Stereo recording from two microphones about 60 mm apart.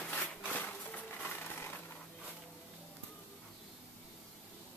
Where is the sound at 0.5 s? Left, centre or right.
Left.